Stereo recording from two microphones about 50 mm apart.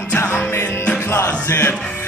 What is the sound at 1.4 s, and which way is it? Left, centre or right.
Music, left.